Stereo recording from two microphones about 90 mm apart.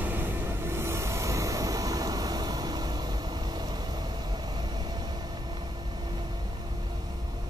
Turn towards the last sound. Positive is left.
turn(degrees=-55)  # may be behind; listen again after turning